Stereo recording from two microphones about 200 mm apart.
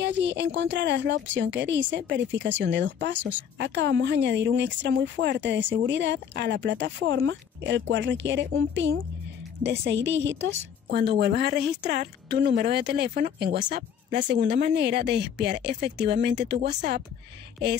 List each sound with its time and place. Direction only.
0.0 s speech: 60° right (ahead or behind)
10.9 s a woman's voice: 50° right (ahead or behind)